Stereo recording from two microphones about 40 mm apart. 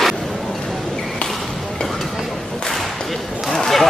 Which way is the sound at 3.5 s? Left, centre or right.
Centre.